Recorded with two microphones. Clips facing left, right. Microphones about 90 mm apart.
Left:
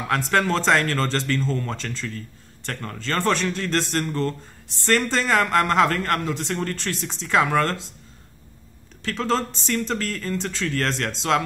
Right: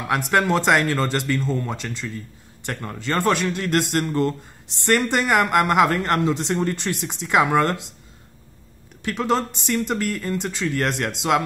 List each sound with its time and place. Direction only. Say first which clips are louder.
0.1 s speech: right 2 dB; 10° right (ahead or behind)
9.0 s speech: right 2 dB; 15° right (ahead or behind)